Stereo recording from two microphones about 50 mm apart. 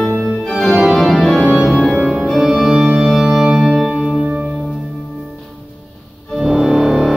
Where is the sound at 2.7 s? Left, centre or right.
Centre.